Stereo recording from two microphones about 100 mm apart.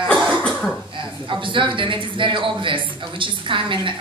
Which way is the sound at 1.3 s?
55° right (ahead or behind).